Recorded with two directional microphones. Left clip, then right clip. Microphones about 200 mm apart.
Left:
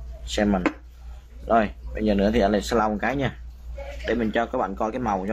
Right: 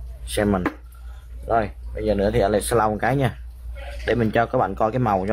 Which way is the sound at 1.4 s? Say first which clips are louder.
Left 1 dB; centre (ahead or behind).